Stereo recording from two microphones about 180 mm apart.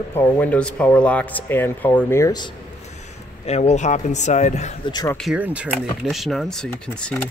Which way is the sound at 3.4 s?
35° left (ahead or behind).